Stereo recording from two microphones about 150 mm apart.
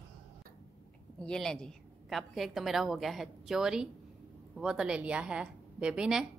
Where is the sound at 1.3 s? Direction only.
5° left (ahead or behind).